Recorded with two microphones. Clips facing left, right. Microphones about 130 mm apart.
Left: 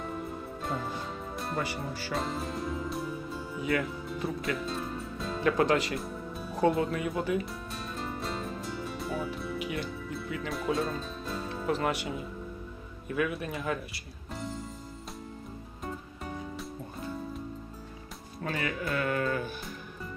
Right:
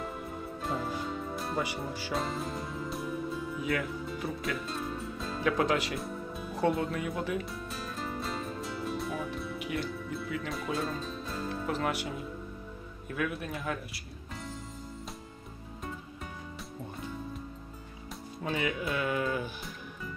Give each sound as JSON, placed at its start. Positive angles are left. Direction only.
{"t": 0.6, "sound": "music", "side_deg": 0}
{"t": 1.6, "sound": "speech", "side_deg": -15}
{"t": 2.1, "sound": "music", "side_deg": 0}
{"t": 13.1, "sound": "speech", "side_deg": 0}
{"t": 18.4, "sound": "speech", "side_deg": -15}